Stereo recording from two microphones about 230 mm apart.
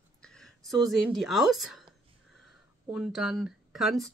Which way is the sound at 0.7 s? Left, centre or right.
Centre.